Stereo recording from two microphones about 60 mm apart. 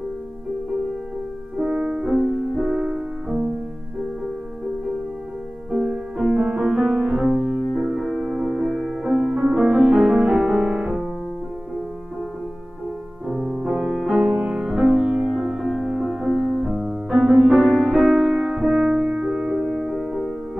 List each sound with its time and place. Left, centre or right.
1.6 s music: centre
2.7 s music: centre
5.7 s music: centre
13.6 s music: centre